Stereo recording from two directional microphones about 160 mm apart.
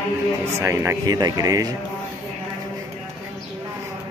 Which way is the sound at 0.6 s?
15° right (ahead or behind).